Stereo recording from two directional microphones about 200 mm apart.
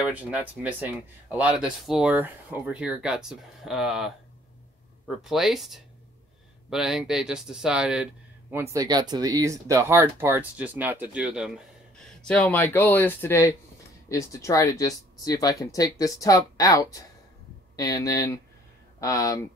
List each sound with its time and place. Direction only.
0.0 s speech: 5° right (ahead or behind)
12.2 s speech: 5° left (ahead or behind)